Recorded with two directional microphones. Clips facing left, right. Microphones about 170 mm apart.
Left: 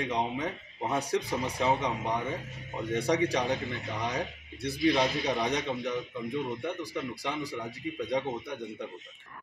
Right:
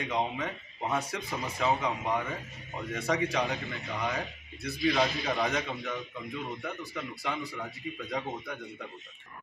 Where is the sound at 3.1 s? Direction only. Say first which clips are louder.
Left 1 dB; 35° left (ahead or behind).